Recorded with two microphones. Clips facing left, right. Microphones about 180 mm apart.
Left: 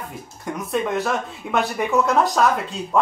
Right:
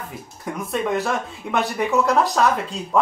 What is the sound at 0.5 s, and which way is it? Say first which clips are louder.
Speech: even; centre (ahead or behind).